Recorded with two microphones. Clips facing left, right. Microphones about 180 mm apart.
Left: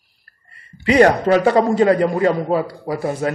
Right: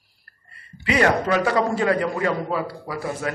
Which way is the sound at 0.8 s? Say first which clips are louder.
Left 7 dB; 30° left (ahead or behind).